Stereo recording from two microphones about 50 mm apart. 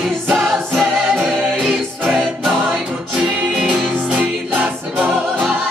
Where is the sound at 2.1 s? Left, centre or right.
Centre.